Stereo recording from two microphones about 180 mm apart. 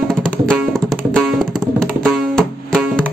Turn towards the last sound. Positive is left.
turn(degrees=5)  # may be behind; listen again after turning